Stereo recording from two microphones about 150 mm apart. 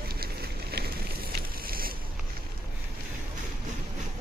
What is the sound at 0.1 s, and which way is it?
Fire, 90° right.